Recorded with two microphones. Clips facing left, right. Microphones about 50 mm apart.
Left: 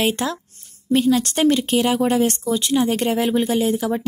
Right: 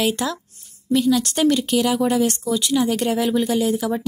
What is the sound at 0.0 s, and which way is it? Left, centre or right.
A woman's voice, left.